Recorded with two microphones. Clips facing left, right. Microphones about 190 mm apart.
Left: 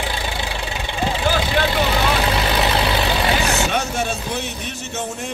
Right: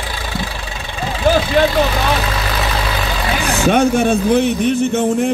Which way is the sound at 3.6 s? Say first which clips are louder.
Right 10 dB; 55° right (ahead or behind).